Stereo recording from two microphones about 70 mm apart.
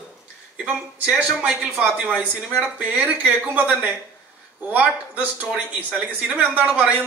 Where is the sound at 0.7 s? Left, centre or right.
Centre.